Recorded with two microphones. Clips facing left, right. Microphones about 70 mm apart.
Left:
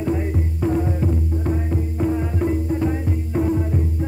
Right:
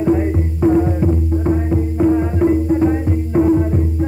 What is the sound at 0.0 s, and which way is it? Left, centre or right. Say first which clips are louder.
Music: right 7 dB; right.